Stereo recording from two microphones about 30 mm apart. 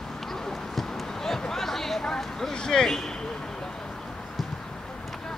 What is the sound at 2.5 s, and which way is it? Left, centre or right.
Speech, left.